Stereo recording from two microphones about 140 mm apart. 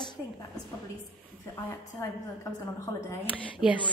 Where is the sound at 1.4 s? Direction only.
20° left (ahead or behind).